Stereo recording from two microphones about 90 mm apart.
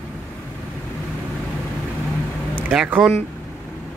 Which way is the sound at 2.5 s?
20° right (ahead or behind).